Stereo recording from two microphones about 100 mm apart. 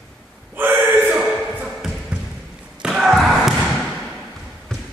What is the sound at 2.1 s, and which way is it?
Basketball bounce, 10° right (ahead or behind).